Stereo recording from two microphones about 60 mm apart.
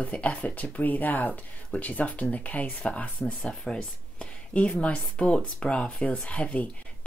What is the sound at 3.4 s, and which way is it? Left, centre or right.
Speech, centre.